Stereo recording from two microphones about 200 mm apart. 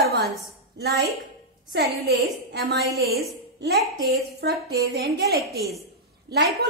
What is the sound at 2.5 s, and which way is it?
Speech, 55° right (ahead or behind).